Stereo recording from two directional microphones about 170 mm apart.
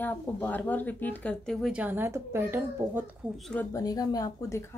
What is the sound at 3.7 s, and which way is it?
Speech, 20° left (ahead or behind).